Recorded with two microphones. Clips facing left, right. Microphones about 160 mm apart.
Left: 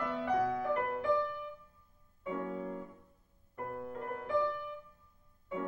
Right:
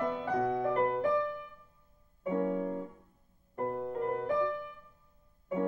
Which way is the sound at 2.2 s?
35° right (ahead or behind).